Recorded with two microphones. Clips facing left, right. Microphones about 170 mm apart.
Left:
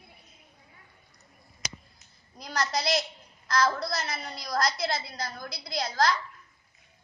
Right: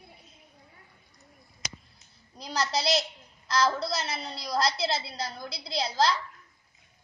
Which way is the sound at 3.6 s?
30° right (ahead or behind).